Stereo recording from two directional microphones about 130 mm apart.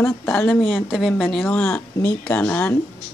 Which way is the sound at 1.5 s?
15° left (ahead or behind).